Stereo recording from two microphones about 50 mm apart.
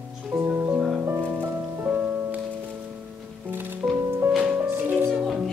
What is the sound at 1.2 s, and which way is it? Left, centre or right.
Music, right.